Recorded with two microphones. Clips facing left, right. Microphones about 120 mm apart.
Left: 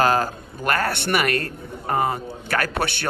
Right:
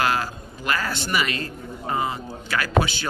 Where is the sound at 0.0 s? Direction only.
45° left (ahead or behind).